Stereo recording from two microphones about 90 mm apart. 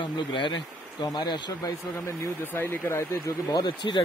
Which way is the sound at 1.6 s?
30° left (ahead or behind).